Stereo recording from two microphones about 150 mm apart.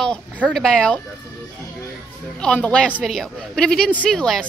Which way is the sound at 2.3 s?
5° left (ahead or behind).